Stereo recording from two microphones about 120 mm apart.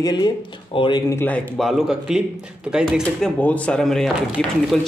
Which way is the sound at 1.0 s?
15° left (ahead or behind).